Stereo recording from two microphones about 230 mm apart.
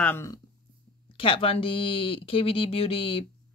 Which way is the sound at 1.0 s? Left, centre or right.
Left.